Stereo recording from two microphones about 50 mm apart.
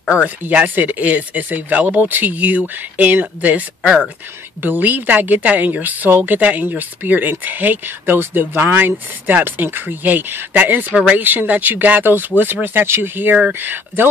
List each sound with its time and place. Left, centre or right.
0.1 s a woman's voice: right
8.6 s a woman's voice: right